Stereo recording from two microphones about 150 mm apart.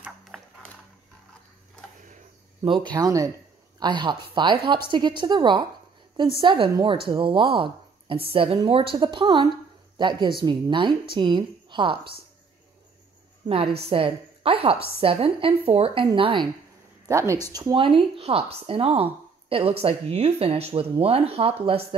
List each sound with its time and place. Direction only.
2.9 s a woman's voice: 25° right (ahead or behind)
13.5 s a woman's voice: 40° right (ahead or behind)
17.1 s a woman's voice: 20° right (ahead or behind); by 21.8 s 40° right (ahead or behind)